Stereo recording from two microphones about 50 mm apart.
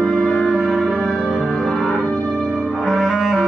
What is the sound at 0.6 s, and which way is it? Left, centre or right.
Music, centre.